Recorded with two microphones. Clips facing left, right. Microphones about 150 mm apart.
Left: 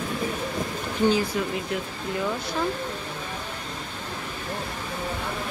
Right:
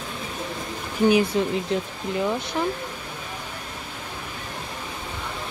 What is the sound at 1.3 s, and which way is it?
Speech, 25° right (ahead or behind).